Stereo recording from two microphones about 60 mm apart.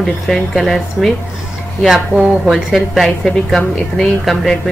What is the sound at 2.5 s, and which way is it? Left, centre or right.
A woman's voice, centre.